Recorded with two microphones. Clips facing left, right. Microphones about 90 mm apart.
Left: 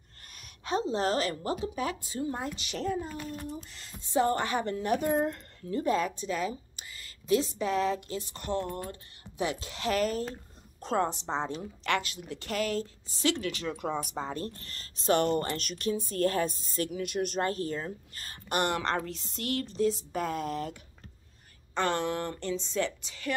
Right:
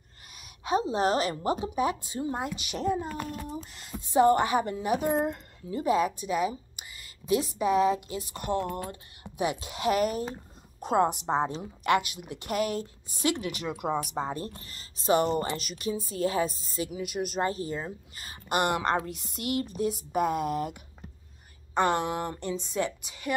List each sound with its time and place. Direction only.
0.7 s a woman's voice: 15° right (ahead or behind)
3.1 s a child's voice: 70° right (ahead or behind)
3.7 s speech: 15° right (ahead or behind)
8.6 s speech: 90° right
9.2 s speech: 15° right (ahead or behind)